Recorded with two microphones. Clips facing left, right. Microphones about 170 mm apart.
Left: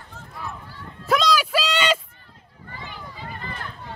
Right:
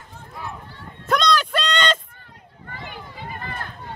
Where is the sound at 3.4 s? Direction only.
50° right (ahead or behind).